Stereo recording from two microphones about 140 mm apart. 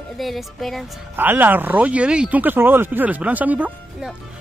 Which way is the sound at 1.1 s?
15° right (ahead or behind).